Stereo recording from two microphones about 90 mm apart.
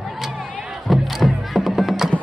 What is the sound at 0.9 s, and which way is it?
Music, centre (ahead or behind).